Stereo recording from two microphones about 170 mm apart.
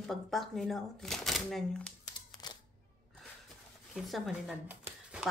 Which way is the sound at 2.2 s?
25° left (ahead or behind).